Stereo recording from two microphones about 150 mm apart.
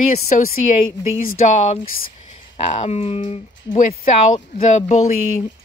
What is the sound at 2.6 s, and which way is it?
Speech, 40° left (ahead or behind).